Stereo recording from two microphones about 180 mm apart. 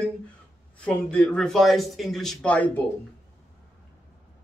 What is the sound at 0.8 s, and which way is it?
Speech, 5° left (ahead or behind).